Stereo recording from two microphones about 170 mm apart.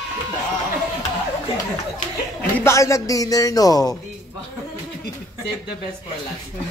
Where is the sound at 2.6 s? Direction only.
15° left (ahead or behind).